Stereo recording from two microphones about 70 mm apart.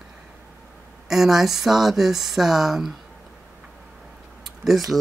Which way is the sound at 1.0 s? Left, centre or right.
Centre.